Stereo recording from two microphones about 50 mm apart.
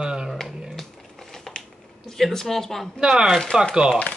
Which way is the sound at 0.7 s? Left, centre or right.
Centre.